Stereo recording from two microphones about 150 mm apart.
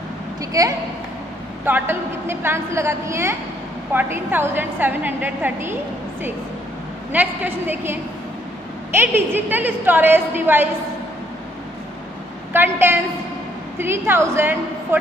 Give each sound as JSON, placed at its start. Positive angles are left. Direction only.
{"t": 0.4, "sound": "a woman's voice", "side_deg": -25}
{"t": 7.1, "sound": "a woman's voice", "side_deg": -10}
{"t": 12.5, "sound": "a woman's voice", "side_deg": -15}